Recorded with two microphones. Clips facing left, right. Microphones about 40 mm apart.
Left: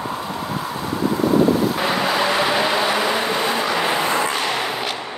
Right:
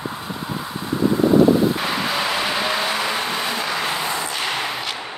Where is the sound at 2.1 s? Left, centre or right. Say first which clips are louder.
Left 4 dB; centre.